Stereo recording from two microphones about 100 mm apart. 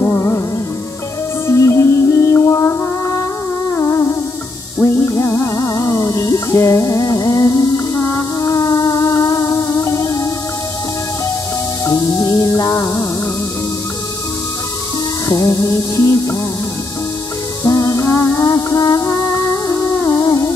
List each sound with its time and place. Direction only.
0.0 s music: 30° left (ahead or behind)
1.5 s music: 30° left (ahead or behind)
11.8 s music: 35° left (ahead or behind)
15.2 s music: 35° left (ahead or behind)
17.6 s music: 30° left (ahead or behind)